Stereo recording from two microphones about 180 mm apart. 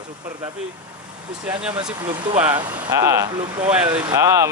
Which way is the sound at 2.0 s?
25° right (ahead or behind).